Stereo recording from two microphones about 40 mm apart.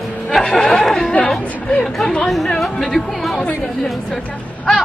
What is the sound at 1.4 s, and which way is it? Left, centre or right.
Speech, left.